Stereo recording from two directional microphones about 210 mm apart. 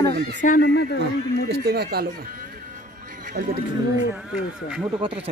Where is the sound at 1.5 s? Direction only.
50° right (ahead or behind).